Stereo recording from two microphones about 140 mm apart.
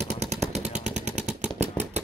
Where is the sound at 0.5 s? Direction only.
55° right (ahead or behind).